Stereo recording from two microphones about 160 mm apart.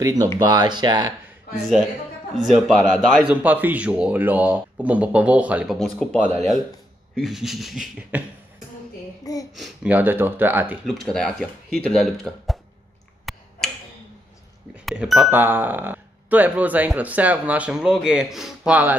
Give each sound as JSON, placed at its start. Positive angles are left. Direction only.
{"t": 0.0, "sound": "speech", "side_deg": -25}
{"t": 2.3, "sound": "speech", "side_deg": 0}
{"t": 3.4, "sound": "speech", "side_deg": -10}
{"t": 5.8, "sound": "speech", "side_deg": 5}
{"t": 9.2, "sound": "a sound", "side_deg": 20}
{"t": 9.6, "sound": "speech", "side_deg": -10}
{"t": 10.9, "sound": "speech", "side_deg": 5}
{"t": 13.2, "sound": "tick-tock", "side_deg": 0}
{"t": 14.9, "sound": "speech", "side_deg": 0}